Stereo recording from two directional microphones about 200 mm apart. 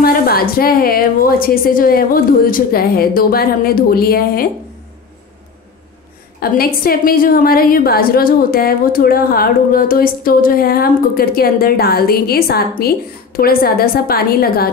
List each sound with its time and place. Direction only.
0.0 s a woman's voice: 50° left (ahead or behind)
6.4 s a woman's voice: 50° left (ahead or behind)